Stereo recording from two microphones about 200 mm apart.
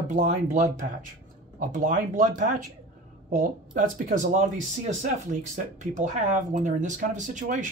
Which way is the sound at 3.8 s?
40° right (ahead or behind).